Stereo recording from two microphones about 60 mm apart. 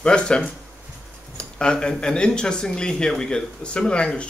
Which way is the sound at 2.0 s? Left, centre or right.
Centre.